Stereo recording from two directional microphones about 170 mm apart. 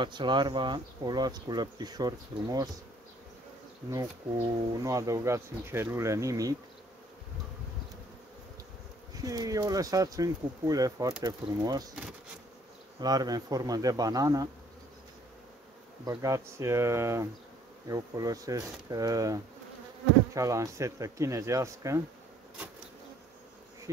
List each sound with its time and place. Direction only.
0.0 s speech: 25° right (ahead or behind)
3.9 s speech: 20° right (ahead or behind)
9.1 s speech: 20° right (ahead or behind)
11.9 s bee: 5° right (ahead or behind)
13.0 s speech: 20° right (ahead or behind)
16.1 s speech: 20° right (ahead or behind)